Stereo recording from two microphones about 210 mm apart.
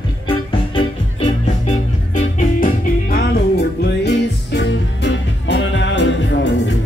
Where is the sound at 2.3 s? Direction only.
45° left (ahead or behind).